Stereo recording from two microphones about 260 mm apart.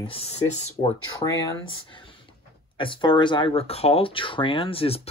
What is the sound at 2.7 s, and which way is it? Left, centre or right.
Speech, centre.